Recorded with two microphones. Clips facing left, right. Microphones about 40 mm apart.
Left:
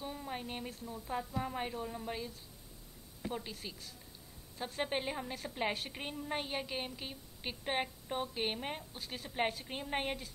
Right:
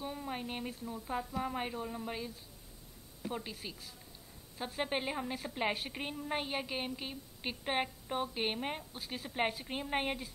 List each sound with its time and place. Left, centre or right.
0.0 s a woman's voice: centre